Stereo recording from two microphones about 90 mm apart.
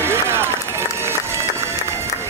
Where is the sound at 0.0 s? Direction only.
30° right (ahead or behind).